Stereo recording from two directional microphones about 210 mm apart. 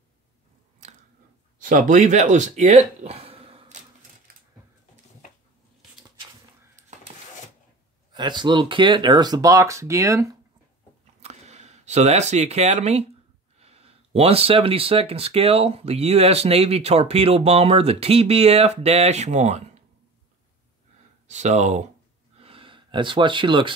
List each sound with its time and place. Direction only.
1.6 s speech: 40° right (ahead or behind)
8.1 s speech: 20° right (ahead or behind)
11.2 s speech: 30° right (ahead or behind)
21.3 s speech: 35° right (ahead or behind)
22.4 s gasp: 25° right (ahead or behind)